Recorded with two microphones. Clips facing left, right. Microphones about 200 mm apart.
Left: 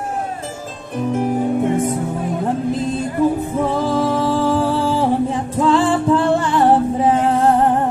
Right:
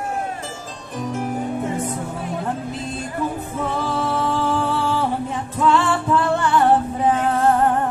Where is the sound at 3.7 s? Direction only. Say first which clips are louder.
Left 4 dB; 35° left (ahead or behind).